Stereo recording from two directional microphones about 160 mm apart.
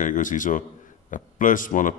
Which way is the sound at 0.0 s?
55° left (ahead or behind).